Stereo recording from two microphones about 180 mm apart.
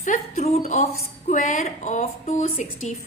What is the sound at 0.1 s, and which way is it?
A woman's voice, 40° left (ahead or behind).